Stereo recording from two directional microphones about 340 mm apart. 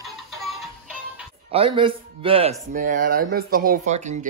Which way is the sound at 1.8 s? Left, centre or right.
Centre.